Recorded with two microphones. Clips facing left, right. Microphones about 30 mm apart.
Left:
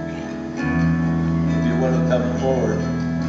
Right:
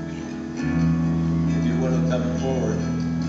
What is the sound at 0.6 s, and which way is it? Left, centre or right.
Music, centre.